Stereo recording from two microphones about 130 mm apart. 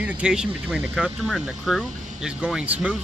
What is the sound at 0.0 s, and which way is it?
Speech, 5° right (ahead or behind).